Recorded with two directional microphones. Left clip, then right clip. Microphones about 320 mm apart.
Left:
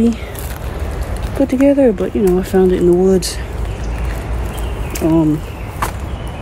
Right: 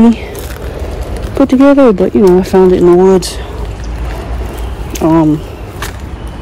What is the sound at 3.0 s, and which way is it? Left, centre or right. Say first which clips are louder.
Speech: right 6 dB; right.